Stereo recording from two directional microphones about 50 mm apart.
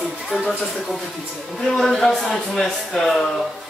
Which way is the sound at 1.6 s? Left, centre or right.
Centre.